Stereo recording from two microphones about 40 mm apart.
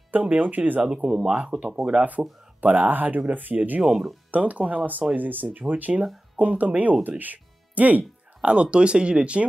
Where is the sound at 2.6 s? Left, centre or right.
Right.